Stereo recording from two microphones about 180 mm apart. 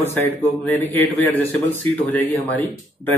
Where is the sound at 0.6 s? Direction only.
10° left (ahead or behind).